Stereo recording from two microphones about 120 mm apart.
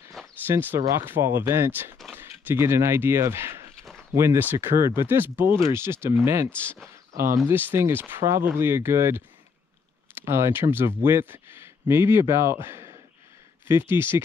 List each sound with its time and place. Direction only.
0.2 s a sound: centre (ahead or behind)
0.5 s speech: 15° right (ahead or behind)
10.2 s a man's voice: 20° right (ahead or behind)